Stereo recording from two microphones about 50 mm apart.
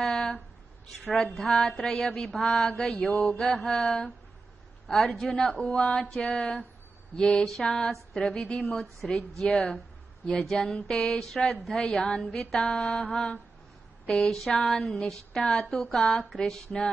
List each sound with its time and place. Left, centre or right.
0.0 s a sound: centre
1.4 s mantra: centre
10.2 s speech: left
10.6 s mantra: centre